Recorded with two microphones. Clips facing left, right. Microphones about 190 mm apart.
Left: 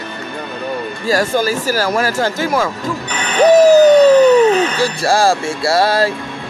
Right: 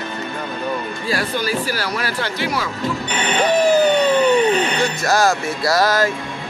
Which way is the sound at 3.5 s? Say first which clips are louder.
Left 8 dB; 40° left (ahead or behind).